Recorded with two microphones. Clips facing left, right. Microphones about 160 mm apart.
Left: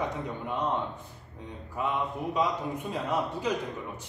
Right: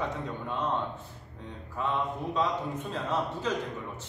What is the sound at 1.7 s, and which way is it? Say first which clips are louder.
A man's voice: even; 15° left (ahead or behind).